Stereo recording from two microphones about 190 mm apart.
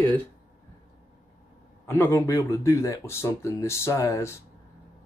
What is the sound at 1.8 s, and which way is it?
Speech, 15° left (ahead or behind).